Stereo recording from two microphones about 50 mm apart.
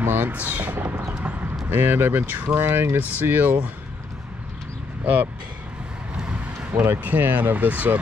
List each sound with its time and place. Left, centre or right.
0.0 s a sound: right
0.3 s speech: right
1.7 s speech: right
3.0 s speech: right
5.0 s speech: right
6.7 s speech: right